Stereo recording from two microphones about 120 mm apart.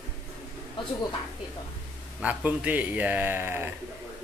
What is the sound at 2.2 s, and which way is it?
Speech, 10° right (ahead or behind).